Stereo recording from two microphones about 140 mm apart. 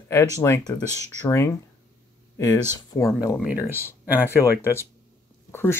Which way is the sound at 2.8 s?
25° left (ahead or behind).